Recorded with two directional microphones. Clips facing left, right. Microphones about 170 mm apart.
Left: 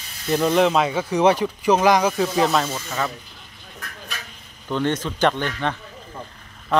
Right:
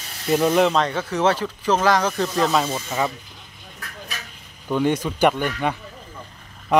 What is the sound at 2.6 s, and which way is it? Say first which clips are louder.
Speech: right 2 dB; 15° right (ahead or behind).